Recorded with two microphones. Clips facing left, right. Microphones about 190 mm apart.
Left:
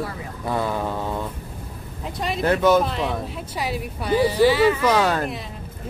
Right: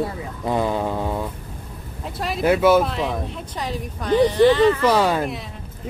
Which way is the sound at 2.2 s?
5° right (ahead or behind).